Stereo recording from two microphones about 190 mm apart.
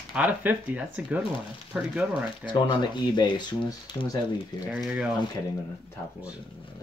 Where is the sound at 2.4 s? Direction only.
25° left (ahead or behind).